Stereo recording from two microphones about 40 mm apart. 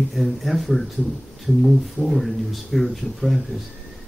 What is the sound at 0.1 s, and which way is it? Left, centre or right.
Speech, centre.